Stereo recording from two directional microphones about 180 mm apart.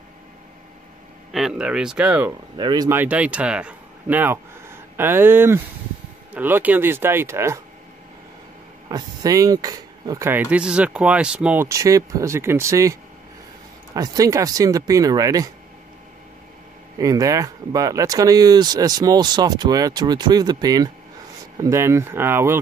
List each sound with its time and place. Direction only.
1.3 s speech: 5° right (ahead or behind)
2.5 s speech: 25° right (ahead or behind)
3.0 s speech: 5° right (ahead or behind)
8.8 s speech: 20° right (ahead or behind)
13.9 s speech: 20° right (ahead or behind)
17.0 s speech: 20° right (ahead or behind)